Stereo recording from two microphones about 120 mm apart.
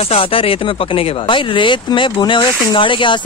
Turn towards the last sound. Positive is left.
turn(degrees=45)  # may be behind; listen again after turning